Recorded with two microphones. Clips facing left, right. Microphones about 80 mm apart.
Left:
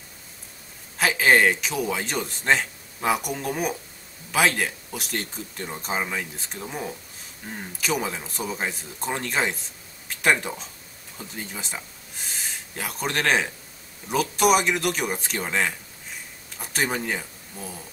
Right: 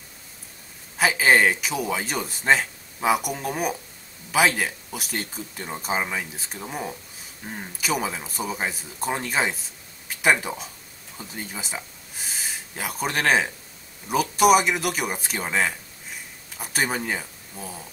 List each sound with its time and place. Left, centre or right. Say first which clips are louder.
0.9 s speech: even; centre